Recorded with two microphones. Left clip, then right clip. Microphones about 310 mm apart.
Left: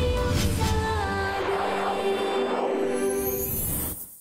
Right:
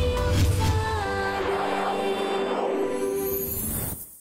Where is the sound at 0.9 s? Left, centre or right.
Centre.